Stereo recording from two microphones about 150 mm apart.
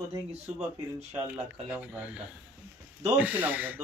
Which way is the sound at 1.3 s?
10° right (ahead or behind).